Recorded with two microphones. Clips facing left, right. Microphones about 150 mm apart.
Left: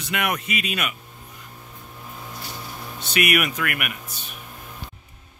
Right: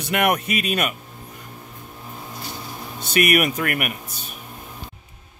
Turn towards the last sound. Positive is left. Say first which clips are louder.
# right 3 dB
turn(degrees=-40)  # may be behind; listen again after turning